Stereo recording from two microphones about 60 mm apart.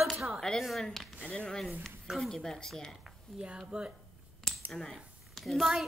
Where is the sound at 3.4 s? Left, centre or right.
Centre.